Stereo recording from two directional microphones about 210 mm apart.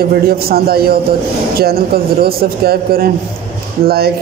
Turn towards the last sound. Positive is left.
turn(degrees=-45)  # may be behind; listen again after turning